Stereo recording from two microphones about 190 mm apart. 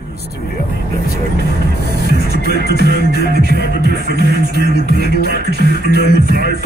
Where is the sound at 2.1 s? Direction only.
55° right (ahead or behind).